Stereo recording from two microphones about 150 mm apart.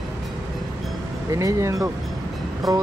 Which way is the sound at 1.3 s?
20° right (ahead or behind).